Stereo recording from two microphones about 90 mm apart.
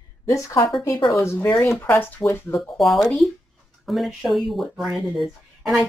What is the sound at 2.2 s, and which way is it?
Speech, 30° left (ahead or behind).